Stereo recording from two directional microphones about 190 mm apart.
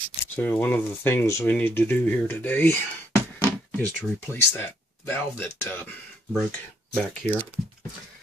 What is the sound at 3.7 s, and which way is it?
Speech, 10° left (ahead or behind).